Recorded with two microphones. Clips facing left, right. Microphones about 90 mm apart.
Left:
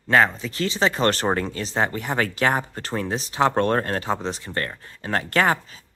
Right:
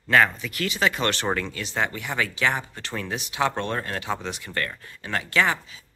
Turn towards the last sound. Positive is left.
turn(degrees=40)  # may be behind; listen again after turning